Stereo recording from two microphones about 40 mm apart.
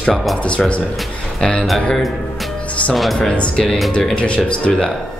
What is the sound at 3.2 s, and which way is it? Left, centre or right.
Speech, left.